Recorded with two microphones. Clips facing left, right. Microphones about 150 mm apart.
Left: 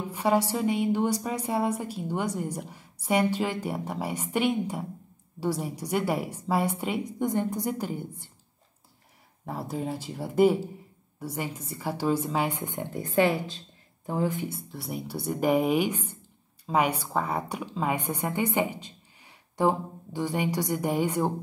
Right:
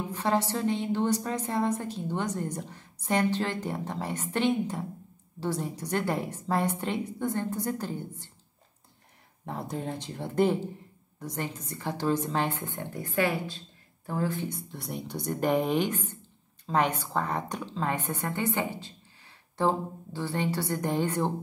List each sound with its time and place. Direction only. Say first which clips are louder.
0.1 s a woman's voice: left 4 dB; 10° left (ahead or behind)
9.5 s a woman's voice: left 2 dB; 5° left (ahead or behind)
14.5 s a woman's voice: left 2 dB; 5° left (ahead or behind)